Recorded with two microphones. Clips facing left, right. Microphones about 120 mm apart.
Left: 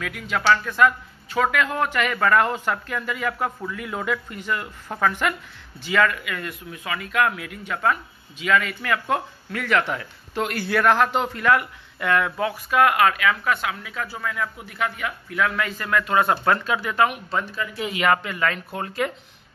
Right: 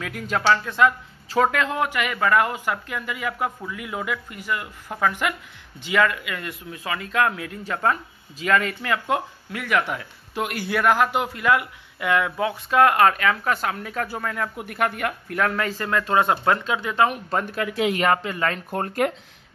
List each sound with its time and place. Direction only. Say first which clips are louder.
0.0 s speech: right 1 dB; 35° right (ahead or behind)
0.5 s speech: left 1 dB; 25° right (ahead or behind)
1.7 s speech: left 1 dB; 15° right (ahead or behind); by 8.7 s 40° right (ahead or behind)
8.8 s speech: even; 20° right (ahead or behind)
12.7 s speech: right 2 dB; 30° right (ahead or behind)
14.6 s speech: right 3 dB; 55° right (ahead or behind); by 17.1 s 25° right (ahead or behind)
17.1 s speech: right 2 dB; 45° right (ahead or behind)
17.6 s speech: right 6 dB; 80° right
18.1 s speech: even; 30° right (ahead or behind)
18.7 s speech: right 3 dB; 50° right (ahead or behind)